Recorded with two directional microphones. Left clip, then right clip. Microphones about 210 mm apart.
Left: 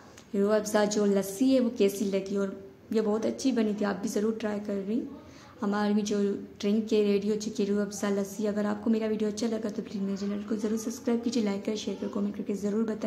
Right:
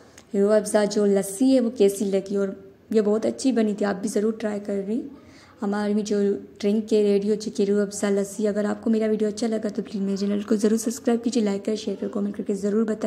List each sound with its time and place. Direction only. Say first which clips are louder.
0.3 s a woman's voice: right 6 dB; 15° right (ahead or behind)
12.6 s a woman's voice: right 7 dB; 25° right (ahead or behind)